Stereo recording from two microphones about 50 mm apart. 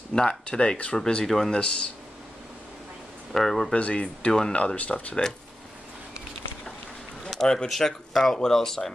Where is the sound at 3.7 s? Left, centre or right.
Left.